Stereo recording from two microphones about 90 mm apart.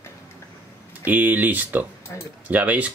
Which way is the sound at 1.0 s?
20° right (ahead or behind).